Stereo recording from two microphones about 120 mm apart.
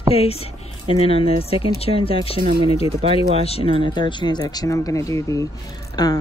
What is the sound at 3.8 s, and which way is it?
Speech, 40° left (ahead or behind).